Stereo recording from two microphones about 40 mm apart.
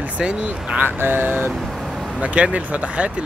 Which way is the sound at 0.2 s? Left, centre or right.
Right.